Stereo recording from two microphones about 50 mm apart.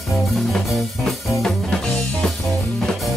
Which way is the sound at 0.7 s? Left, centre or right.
Centre.